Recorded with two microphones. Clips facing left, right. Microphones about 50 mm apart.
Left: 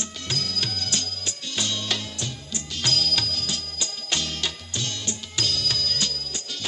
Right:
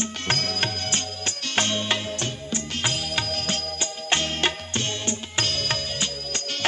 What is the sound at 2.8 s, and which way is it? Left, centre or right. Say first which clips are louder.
Music: left 2 dB; right.